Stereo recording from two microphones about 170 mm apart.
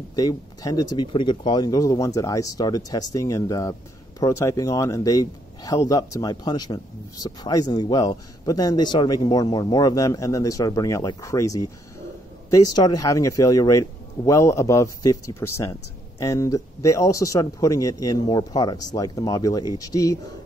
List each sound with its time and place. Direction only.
0.1 s a man's voice: 20° left (ahead or behind)